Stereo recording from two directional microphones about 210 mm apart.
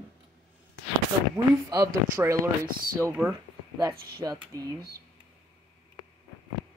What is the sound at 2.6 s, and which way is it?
Speech, 45° right (ahead or behind).